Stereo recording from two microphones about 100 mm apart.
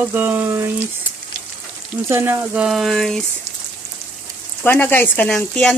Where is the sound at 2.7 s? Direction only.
Centre (ahead or behind).